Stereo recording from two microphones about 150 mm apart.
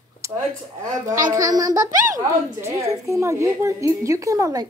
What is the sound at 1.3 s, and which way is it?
A child's voice, 25° right (ahead or behind).